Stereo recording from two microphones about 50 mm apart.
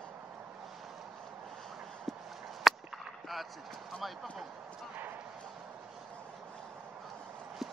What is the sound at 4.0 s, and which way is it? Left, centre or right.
Speech, centre.